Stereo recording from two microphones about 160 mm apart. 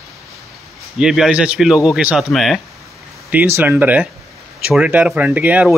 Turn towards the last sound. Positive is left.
turn(degrees=-10)  # may be behind; listen again after turning